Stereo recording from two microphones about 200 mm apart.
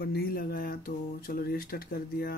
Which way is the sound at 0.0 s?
50° left (ahead or behind).